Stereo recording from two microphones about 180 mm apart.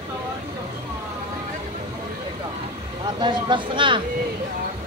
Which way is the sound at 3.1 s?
25° right (ahead or behind).